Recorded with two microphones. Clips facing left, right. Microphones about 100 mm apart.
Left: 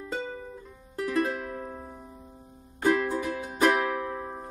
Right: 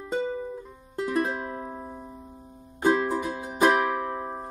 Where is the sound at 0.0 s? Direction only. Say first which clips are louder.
Right 6 dB; 25° right (ahead or behind).